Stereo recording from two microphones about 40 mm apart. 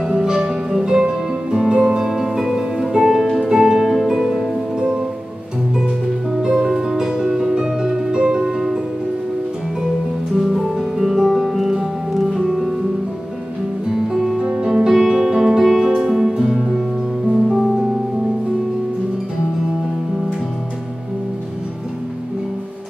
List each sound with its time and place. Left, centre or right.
0.0 s music: centre
6.4 s music: centre
10.3 s music: centre
13.8 s music: centre
15.0 s music: centre
15.6 s music: centre